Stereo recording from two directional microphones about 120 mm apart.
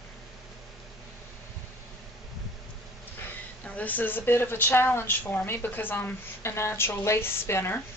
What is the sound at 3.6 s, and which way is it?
Speech, 10° left (ahead or behind).